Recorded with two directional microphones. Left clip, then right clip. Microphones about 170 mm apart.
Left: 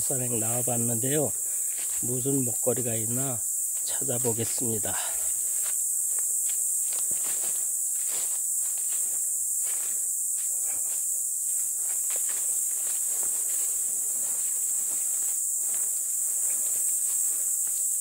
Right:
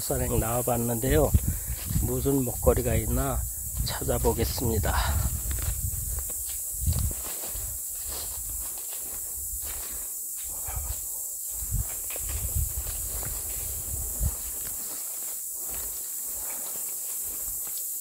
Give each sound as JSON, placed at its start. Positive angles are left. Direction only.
{"t": 0.1, "sound": "speech", "side_deg": 0}